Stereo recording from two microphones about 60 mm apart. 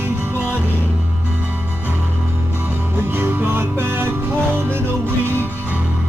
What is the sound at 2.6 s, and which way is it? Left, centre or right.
Music, right.